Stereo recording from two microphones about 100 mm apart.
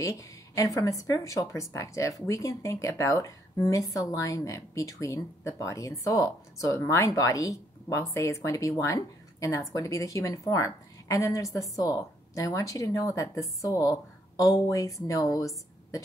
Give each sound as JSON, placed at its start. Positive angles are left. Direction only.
{"t": 0.0, "sound": "a woman's voice", "side_deg": 35}